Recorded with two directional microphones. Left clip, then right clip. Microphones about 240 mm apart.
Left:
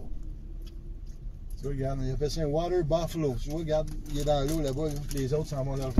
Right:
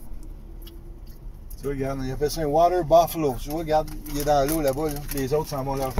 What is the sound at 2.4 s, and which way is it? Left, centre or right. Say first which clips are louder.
Speech: right 10 dB; left.